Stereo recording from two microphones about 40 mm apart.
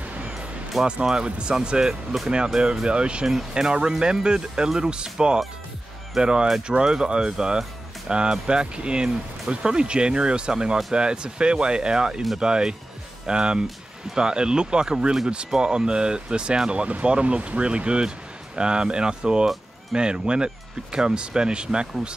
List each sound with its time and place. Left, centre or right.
1.0 s speech: right
6.1 s speech: centre